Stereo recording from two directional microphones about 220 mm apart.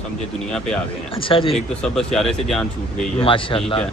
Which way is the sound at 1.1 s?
25° left (ahead or behind).